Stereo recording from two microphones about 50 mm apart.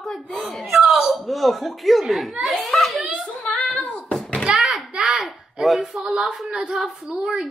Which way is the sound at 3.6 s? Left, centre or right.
Left.